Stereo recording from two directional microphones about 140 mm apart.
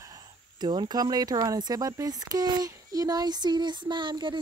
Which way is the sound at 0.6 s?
30° right (ahead or behind).